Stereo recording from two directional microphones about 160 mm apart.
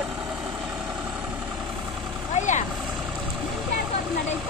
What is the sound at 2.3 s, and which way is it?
Vehicle, 50° left (ahead or behind).